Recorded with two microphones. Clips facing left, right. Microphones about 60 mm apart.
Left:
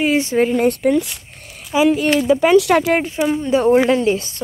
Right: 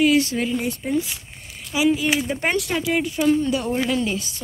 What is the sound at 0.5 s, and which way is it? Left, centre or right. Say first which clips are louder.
Speech: left 9 dB; left.